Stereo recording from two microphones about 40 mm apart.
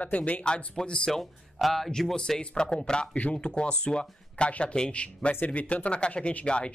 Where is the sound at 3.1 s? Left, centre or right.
Left.